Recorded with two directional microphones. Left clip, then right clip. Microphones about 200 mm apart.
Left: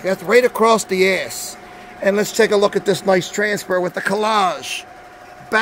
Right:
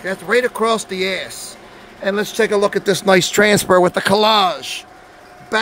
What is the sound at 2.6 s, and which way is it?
Speech, 5° right (ahead or behind).